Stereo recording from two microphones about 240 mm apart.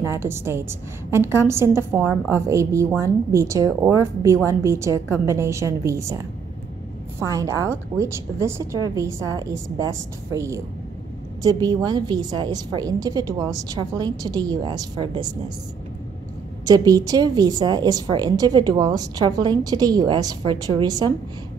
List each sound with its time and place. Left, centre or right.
0.0 s a woman's voice: centre
16.6 s a woman's voice: centre